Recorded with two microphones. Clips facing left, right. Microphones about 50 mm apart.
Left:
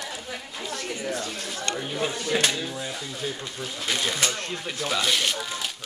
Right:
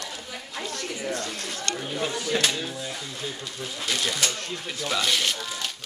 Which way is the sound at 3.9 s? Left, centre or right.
Left.